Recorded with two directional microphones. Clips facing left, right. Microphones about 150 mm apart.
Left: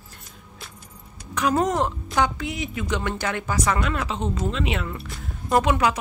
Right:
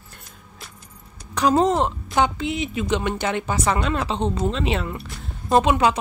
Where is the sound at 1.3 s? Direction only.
30° right (ahead or behind).